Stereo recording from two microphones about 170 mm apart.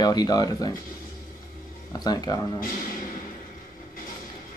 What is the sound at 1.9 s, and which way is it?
Speech, 20° left (ahead or behind).